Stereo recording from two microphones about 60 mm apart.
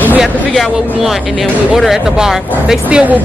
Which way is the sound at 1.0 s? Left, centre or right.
Centre.